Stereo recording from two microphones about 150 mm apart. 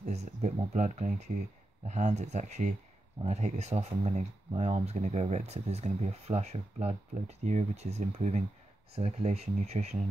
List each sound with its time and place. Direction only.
0.0 s speech: 45° right (ahead or behind)